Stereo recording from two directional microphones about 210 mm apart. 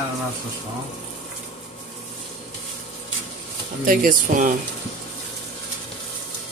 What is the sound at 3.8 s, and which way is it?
Speech, 40° right (ahead or behind).